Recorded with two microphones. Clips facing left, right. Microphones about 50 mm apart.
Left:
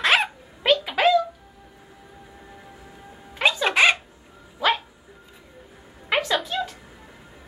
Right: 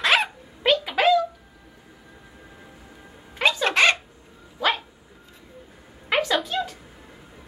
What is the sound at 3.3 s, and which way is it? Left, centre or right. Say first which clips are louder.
Music: even; centre.